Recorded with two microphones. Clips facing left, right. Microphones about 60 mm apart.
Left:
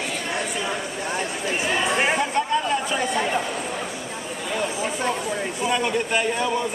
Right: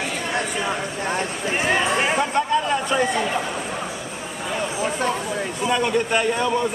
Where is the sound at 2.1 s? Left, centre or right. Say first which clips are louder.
Right 2 dB; centre.